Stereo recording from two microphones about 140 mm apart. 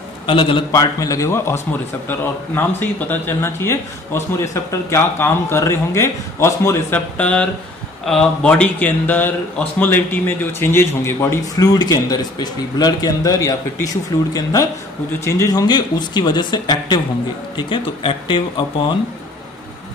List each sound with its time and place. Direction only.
0.3 s speech: 40° left (ahead or behind)
0.7 s a man's voice: 25° left (ahead or behind)
7.2 s a man's voice: 10° left (ahead or behind); by 18.4 s 35° left (ahead or behind)